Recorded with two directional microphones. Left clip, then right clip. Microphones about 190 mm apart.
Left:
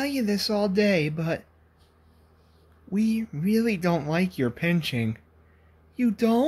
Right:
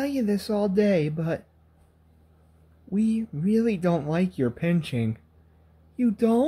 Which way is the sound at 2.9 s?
5° right (ahead or behind).